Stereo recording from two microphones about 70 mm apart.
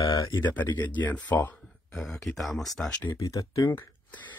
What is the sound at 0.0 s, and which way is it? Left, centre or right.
Speech, left.